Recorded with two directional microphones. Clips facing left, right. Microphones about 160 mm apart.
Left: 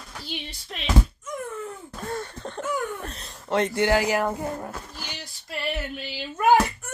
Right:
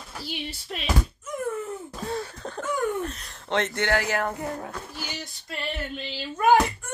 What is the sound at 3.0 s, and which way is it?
Cat, 30° left (ahead or behind).